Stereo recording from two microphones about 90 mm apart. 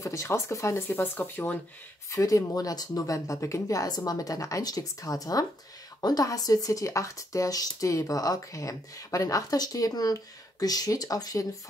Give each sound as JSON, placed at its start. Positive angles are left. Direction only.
{"t": 0.0, "sound": "speech", "side_deg": 35}
{"t": 2.0, "sound": "speech", "side_deg": 35}